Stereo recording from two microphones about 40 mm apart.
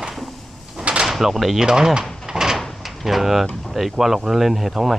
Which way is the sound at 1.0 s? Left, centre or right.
Centre.